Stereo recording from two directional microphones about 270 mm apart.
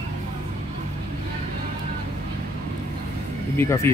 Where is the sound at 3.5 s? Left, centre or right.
Centre.